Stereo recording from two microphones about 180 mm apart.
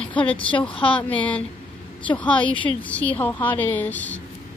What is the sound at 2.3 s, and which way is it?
Speech, 30° left (ahead or behind).